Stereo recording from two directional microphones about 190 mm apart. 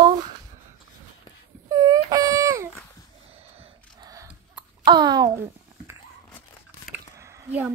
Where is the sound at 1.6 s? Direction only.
20° right (ahead or behind).